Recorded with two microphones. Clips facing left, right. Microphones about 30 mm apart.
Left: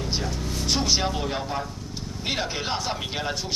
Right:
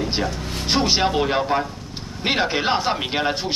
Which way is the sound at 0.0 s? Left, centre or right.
Right.